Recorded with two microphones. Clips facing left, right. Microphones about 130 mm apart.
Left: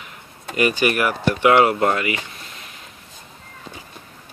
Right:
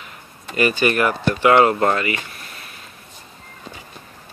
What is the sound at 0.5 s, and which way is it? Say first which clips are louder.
Speech: right 1 dB; 15° left (ahead or behind).